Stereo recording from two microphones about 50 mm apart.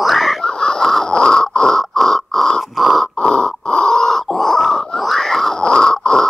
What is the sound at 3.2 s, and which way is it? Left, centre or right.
Grunt, centre.